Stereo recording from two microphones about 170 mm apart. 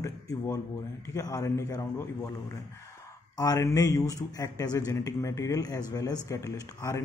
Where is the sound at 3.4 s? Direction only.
20° left (ahead or behind).